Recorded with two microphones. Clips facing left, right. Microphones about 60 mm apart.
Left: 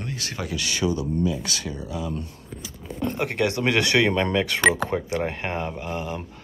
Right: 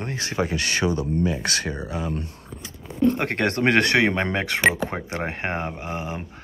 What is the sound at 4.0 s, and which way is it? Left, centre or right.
Speech, right.